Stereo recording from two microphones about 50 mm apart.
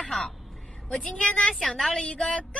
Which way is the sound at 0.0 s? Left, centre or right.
Centre.